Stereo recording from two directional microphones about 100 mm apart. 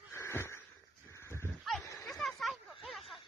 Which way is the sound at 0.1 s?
25° left (ahead or behind).